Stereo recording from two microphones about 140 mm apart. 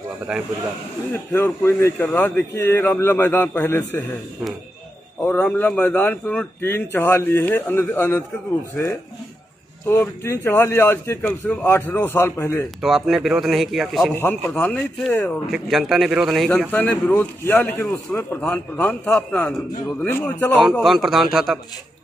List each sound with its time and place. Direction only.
0.3 s a man's voice: 5° right (ahead or behind)
1.1 s a man's voice: 15° left (ahead or behind)
5.2 s a man's voice: 10° left (ahead or behind)
9.8 s a man's voice: 20° left (ahead or behind)
12.8 s a man's voice: centre (ahead or behind)
14.1 s a man's voice: 10° left (ahead or behind)
15.4 s a man's voice: centre (ahead or behind)
20.8 s a man's voice: centre (ahead or behind)